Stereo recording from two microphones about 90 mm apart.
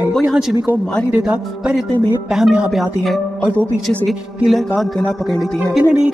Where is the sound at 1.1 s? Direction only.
15° right (ahead or behind).